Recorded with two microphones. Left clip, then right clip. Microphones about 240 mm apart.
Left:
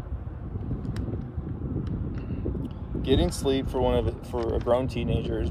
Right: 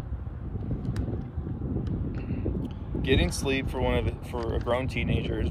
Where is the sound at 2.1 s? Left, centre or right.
Centre.